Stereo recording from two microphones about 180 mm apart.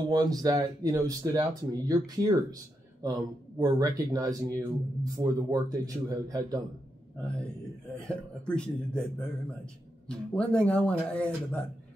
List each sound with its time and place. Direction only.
0.1 s speech: 20° right (ahead or behind)
8.1 s speech: 5° left (ahead or behind)
10.0 s speech: 5° left (ahead or behind)